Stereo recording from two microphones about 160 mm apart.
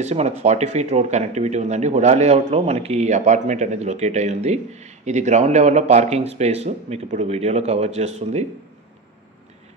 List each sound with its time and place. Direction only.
0.0 s speech: 45° right (ahead or behind)